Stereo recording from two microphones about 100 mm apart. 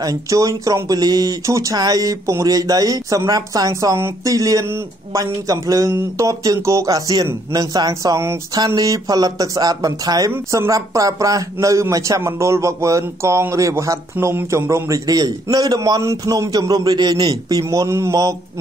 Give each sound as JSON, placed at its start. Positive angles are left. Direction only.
{"t": 0.0, "sound": "a man's voice", "side_deg": -35}
{"t": 14.1, "sound": "speech", "side_deg": -20}
{"t": 16.0, "sound": "speech", "side_deg": -30}